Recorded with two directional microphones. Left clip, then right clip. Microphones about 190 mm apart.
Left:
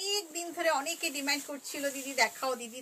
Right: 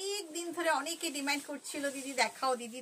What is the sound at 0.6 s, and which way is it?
A woman's voice, 20° right (ahead or behind).